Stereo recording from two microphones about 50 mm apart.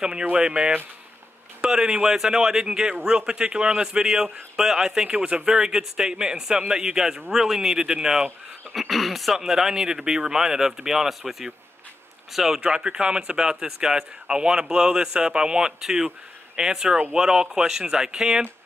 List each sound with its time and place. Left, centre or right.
0.0 s a man's voice: centre
12.5 s a man's voice: centre